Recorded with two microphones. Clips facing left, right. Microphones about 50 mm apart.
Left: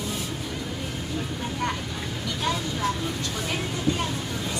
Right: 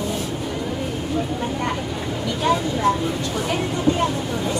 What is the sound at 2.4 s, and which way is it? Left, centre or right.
Vehicle, centre.